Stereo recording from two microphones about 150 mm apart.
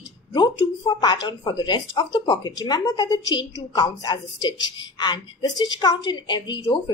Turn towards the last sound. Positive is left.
turn(degrees=30)  # may be behind; listen again after turning